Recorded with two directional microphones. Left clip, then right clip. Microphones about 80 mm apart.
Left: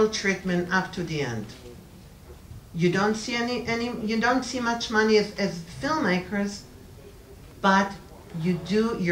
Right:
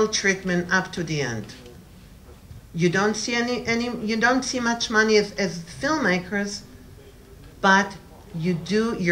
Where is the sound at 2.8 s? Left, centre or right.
Right.